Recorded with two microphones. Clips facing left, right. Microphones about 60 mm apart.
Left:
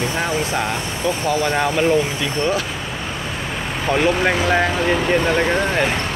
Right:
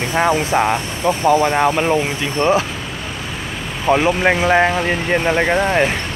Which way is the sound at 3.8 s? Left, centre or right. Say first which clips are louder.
Right 3 dB; centre.